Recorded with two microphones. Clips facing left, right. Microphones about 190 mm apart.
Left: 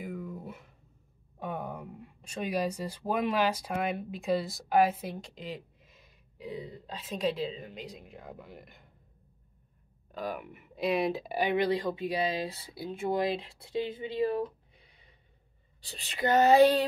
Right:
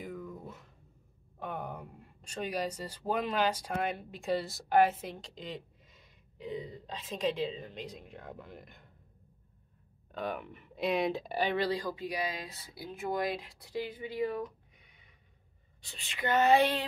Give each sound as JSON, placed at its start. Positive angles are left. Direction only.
{"t": 0.0, "sound": "a sound", "side_deg": 5}
{"t": 1.4, "sound": "speech", "side_deg": 10}
{"t": 10.1, "sound": "speech", "side_deg": 5}